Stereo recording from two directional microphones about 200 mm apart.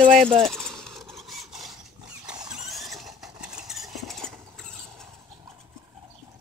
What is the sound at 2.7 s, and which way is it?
Vehicle, centre (ahead or behind).